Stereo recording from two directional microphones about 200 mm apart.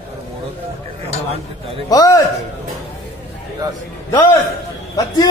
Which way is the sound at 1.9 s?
15° left (ahead or behind).